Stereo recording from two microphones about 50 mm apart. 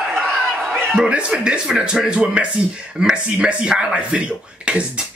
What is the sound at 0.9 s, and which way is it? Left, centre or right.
Speech, centre.